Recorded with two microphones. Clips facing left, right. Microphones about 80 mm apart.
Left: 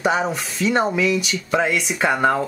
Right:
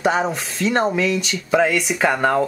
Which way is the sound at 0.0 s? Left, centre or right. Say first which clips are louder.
Right 1 dB; centre.